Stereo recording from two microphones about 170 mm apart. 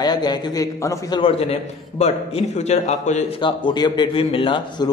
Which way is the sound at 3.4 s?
25° left (ahead or behind).